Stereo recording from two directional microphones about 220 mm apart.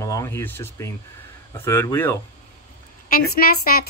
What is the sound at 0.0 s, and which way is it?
Speech, 15° left (ahead or behind).